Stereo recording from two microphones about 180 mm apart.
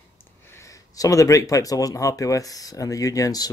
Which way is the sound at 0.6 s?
20° left (ahead or behind).